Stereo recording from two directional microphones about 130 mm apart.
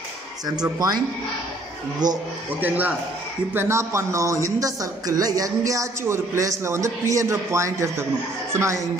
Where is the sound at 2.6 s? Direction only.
15° right (ahead or behind).